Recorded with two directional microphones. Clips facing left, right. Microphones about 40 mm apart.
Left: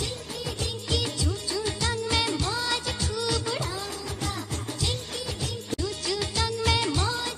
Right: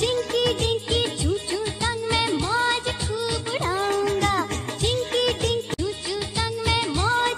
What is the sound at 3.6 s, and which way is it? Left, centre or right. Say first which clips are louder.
Music: right 11 dB; right.